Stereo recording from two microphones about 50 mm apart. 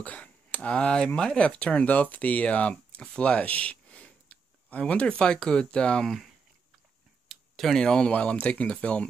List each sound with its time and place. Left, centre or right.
0.0 s speech: left
1.9 s speech: left
7.2 s tick-tock: centre
7.8 s speech: centre